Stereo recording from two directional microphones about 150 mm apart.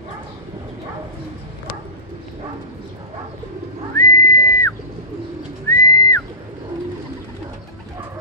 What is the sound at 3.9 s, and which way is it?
Whistling, 25° left (ahead or behind).